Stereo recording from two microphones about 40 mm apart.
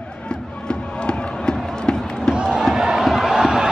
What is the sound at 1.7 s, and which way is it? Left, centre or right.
Run, centre.